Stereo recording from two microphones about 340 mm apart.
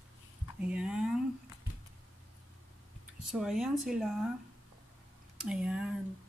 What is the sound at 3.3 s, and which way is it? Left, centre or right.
Speech, centre.